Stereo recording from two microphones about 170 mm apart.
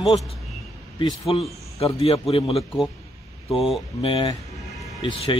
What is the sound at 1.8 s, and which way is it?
Speech, 35° left (ahead or behind).